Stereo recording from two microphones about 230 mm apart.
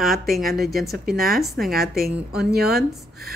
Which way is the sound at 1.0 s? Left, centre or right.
Right.